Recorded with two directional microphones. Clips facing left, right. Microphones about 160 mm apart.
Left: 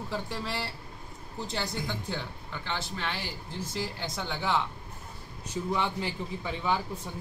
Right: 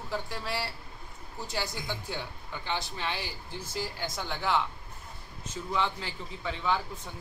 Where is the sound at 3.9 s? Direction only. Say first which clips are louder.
Left 1 dB; centre (ahead or behind).